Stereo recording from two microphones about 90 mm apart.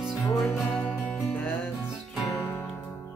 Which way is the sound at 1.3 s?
15° left (ahead or behind).